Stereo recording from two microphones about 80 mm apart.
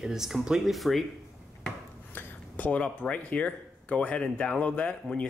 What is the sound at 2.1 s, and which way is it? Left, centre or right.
Speech, centre.